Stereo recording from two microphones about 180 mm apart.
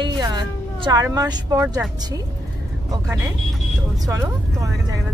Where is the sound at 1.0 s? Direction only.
20° right (ahead or behind).